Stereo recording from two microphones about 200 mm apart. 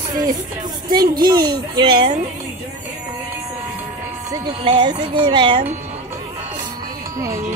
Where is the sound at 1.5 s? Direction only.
20° right (ahead or behind).